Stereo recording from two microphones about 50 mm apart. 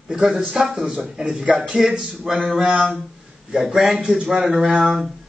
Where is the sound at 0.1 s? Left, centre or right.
Centre.